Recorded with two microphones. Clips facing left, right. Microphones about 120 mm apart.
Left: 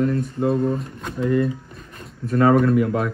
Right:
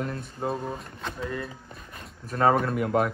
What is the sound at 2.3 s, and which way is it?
Speech, 30° right (ahead or behind).